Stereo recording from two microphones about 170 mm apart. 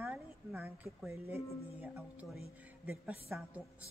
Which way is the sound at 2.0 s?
Centre (ahead or behind).